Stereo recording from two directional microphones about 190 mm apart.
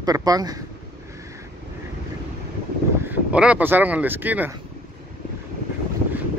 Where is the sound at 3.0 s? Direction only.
10° right (ahead or behind).